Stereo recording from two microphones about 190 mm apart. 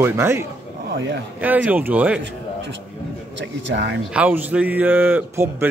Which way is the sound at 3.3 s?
70° right (ahead or behind).